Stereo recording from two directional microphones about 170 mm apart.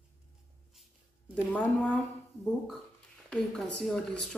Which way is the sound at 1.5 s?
10° left (ahead or behind).